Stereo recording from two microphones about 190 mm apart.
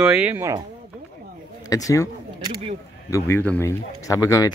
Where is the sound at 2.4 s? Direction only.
25° right (ahead or behind).